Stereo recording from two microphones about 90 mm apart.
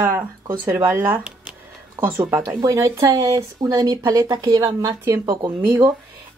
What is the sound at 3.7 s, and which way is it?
Speech, 55° right (ahead or behind).